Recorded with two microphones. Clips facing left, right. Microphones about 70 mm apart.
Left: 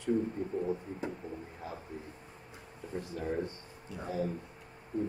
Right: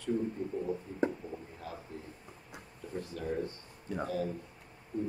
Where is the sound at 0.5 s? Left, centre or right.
Left.